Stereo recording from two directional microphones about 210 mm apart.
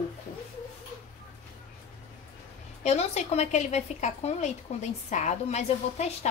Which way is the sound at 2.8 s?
35° left (ahead or behind).